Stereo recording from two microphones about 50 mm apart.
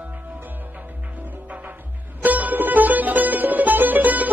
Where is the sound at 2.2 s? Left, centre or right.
Right.